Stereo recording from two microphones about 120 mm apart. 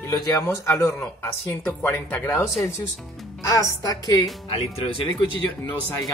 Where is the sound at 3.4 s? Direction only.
30° left (ahead or behind).